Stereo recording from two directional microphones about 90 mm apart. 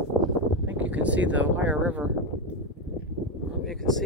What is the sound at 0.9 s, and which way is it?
Speech, 15° right (ahead or behind).